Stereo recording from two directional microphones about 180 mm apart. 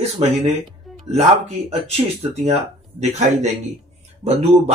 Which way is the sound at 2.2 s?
35° right (ahead or behind).